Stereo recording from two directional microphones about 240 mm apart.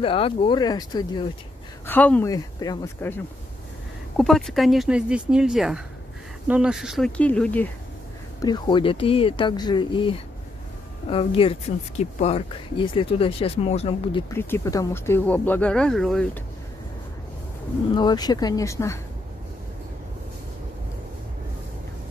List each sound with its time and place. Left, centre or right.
0.0 s speech: left
4.2 s speech: centre
8.4 s speech: centre
14.3 s speech: centre
17.9 s speech: centre